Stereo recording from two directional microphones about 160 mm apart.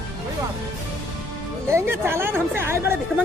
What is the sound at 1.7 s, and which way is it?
A woman's voice, 15° right (ahead or behind).